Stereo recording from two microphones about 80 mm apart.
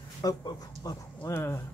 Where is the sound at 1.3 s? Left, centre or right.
Left.